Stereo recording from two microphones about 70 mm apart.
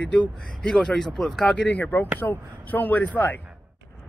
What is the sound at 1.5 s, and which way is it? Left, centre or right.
Speech, centre.